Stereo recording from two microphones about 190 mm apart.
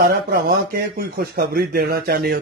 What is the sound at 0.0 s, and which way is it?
Speech, 60° right (ahead or behind).